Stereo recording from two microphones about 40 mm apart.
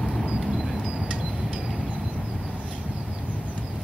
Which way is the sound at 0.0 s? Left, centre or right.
Centre.